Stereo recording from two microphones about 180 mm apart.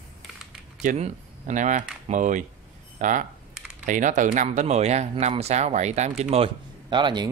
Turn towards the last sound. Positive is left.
turn(degrees=-25)  # may be behind; listen again after turning